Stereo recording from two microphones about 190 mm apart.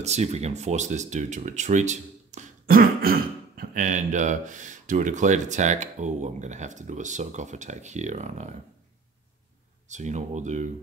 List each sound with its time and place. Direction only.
0.0 s speech: 35° right (ahead or behind)
9.8 s speech: 40° right (ahead or behind)